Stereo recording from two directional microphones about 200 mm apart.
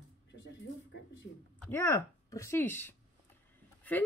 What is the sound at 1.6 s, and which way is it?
A woman's voice, 10° left (ahead or behind).